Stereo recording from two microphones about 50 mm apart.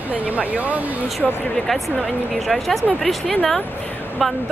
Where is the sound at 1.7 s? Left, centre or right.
Centre.